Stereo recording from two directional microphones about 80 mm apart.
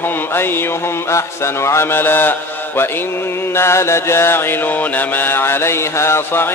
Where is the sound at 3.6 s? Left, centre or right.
Left.